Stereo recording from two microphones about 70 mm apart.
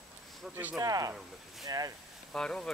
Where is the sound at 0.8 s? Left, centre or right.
Right.